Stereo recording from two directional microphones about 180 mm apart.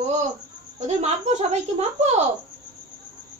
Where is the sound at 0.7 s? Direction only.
40° right (ahead or behind).